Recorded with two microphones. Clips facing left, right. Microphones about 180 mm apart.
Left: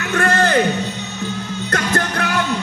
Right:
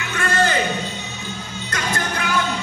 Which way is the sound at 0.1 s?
65° left (ahead or behind).